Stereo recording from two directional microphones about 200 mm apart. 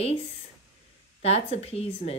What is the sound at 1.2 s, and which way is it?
Speech, 30° left (ahead or behind).